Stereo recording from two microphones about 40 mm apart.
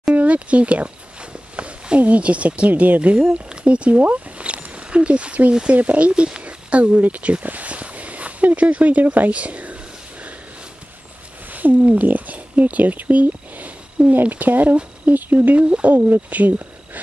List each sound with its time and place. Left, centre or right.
0.1 s speech: right
4.0 s a sound: right
5.5 s speech: right
5.8 s speech: right
11.5 s speech: right